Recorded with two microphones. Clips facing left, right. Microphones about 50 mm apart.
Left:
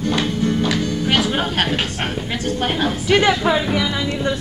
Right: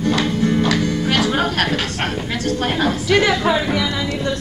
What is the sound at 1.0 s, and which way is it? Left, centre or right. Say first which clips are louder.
Music: left 1 dB; centre.